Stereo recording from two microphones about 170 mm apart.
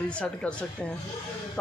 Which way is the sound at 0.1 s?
5° left (ahead or behind).